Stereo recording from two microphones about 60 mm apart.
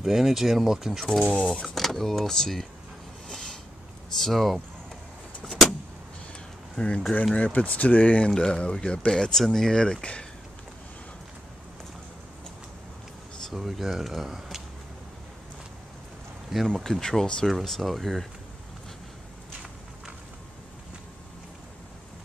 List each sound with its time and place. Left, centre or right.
0.0 s speech: centre
1.2 s speech: centre
1.6 s speech: centre
3.3 s a sound: centre
4.2 s speech: centre
5.4 s vehicle: centre
6.8 s speech: centre
8.3 s speech: centre
13.5 s speech: centre
16.6 s speech: centre